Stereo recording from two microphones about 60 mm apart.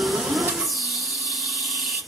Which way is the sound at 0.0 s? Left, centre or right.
Centre.